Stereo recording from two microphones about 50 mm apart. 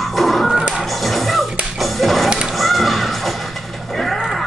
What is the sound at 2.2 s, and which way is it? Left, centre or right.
Music, centre.